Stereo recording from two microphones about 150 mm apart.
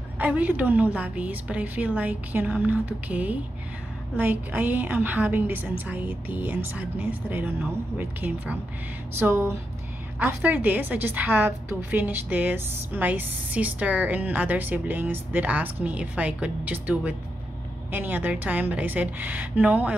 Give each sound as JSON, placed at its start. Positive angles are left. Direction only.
{"t": 0.2, "sound": "a woman's voice", "side_deg": -10}